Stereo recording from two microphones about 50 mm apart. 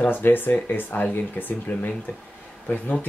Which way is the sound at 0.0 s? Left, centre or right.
Left.